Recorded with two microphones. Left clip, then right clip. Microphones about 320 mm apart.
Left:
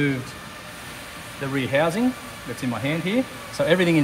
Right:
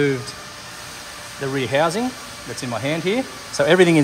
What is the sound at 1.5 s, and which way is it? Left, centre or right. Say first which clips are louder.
Speech: right 2 dB; right.